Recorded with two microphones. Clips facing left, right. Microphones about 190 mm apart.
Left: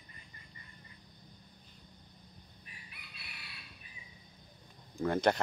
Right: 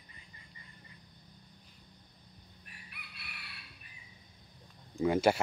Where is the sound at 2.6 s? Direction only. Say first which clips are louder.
Right 3 dB; 60° right (ahead or behind).